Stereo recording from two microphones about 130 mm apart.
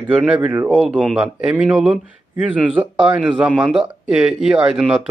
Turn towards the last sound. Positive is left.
turn(degrees=-5)  # may be behind; listen again after turning